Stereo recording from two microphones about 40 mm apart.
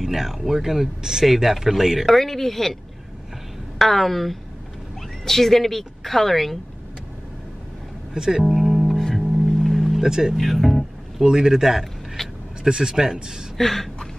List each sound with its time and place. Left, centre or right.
0.0 s a woman's voice: centre
2.0 s a woman's voice: centre
8.1 s music: centre
9.9 s speech: centre
10.3 s music: centre
11.2 s speech: centre
12.2 s speech: centre
12.6 s speech: centre
13.6 s a sound: centre